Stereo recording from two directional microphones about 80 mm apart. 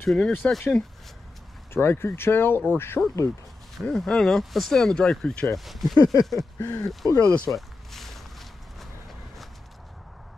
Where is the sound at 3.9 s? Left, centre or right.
Centre.